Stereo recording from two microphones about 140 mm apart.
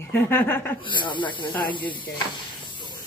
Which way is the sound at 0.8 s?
35° left (ahead or behind).